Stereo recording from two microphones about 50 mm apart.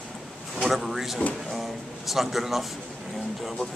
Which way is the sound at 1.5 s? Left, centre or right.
Centre.